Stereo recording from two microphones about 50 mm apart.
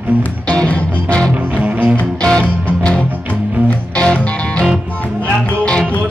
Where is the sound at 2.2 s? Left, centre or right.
Centre.